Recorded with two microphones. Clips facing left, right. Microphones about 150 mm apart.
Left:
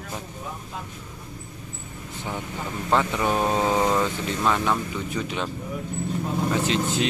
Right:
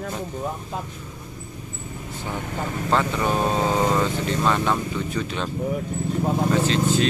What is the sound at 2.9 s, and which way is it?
Speech, 10° left (ahead or behind).